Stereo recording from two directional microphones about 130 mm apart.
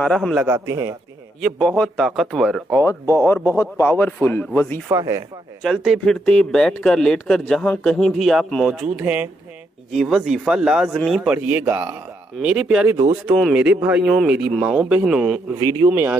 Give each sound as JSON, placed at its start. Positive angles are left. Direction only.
{"t": 0.0, "sound": "speech", "side_deg": 5}
{"t": 0.5, "sound": "a man's voice", "side_deg": -25}
{"t": 1.4, "sound": "speech", "side_deg": 5}
{"t": 2.8, "sound": "speech", "side_deg": 20}
{"t": 4.8, "sound": "a man's voice", "side_deg": -25}
{"t": 5.6, "sound": "speech", "side_deg": 0}
{"t": 9.0, "sound": "speech", "side_deg": -10}
{"t": 9.9, "sound": "speech", "side_deg": 0}
{"t": 12.4, "sound": "speech", "side_deg": -5}
{"t": 15.9, "sound": "speech", "side_deg": -15}